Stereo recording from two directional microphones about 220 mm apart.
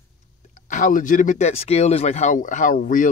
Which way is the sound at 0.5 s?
35° left (ahead or behind).